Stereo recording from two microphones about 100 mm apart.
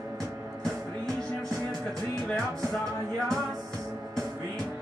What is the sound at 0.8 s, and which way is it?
Music, 5° left (ahead or behind).